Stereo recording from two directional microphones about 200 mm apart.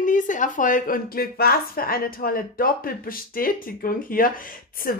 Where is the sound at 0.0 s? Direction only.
40° left (ahead or behind).